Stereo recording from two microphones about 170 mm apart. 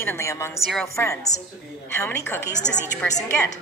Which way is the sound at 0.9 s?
15° left (ahead or behind).